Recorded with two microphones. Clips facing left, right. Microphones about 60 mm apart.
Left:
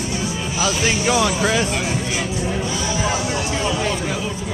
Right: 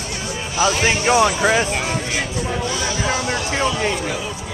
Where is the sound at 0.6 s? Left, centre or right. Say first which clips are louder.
Right 3 dB; right.